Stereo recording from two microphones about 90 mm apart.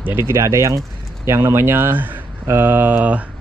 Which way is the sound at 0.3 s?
35° right (ahead or behind).